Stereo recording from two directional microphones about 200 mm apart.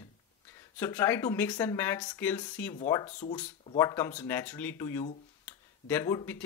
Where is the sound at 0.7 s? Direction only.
10° left (ahead or behind).